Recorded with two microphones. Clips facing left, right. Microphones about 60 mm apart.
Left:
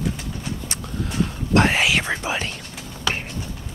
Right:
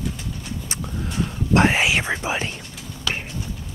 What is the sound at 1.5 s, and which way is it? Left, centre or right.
Whispering, right.